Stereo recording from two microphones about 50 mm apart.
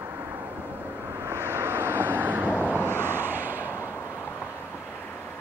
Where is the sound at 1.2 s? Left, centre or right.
Right.